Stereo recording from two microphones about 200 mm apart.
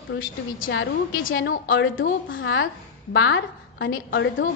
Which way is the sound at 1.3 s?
60° left (ahead or behind).